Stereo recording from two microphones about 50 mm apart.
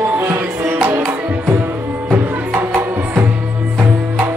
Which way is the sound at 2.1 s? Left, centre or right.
Right.